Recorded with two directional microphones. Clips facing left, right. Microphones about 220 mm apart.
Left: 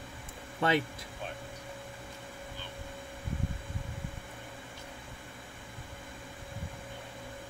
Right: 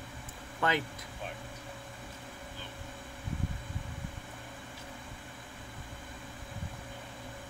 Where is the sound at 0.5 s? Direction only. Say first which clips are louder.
Left 3 dB; 25° left (ahead or behind).